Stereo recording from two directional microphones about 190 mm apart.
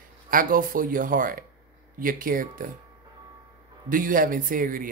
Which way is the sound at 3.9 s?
45° right (ahead or behind).